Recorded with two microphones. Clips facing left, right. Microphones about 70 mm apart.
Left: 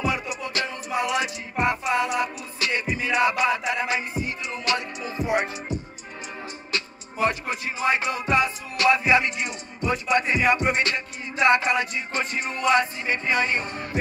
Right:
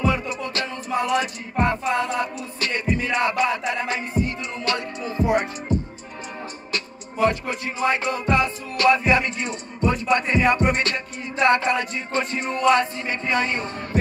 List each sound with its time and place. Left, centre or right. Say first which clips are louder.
0.0 s music: right 3 dB; centre
7.4 s music: right 2 dB; centre